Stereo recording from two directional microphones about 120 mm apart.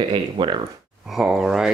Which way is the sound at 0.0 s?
40° right (ahead or behind).